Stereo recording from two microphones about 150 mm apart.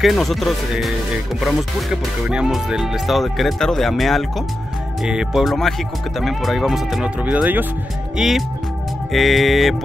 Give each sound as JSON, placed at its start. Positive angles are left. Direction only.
{"t": 0.0, "sound": "speech", "side_deg": 0}
{"t": 2.2, "sound": "speech", "side_deg": -5}